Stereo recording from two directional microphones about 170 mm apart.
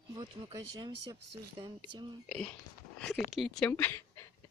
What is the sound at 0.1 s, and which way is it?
Speech, 25° right (ahead or behind).